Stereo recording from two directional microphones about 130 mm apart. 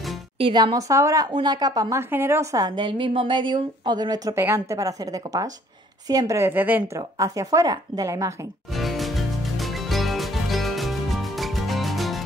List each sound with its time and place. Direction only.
0.4 s a woman's voice: 40° right (ahead or behind); by 2.6 s 20° right (ahead or behind)
2.6 s a woman's voice: 35° right (ahead or behind); by 7.0 s 15° right (ahead or behind)
7.0 s a woman's voice: 30° right (ahead or behind)
8.7 s music: centre (ahead or behind)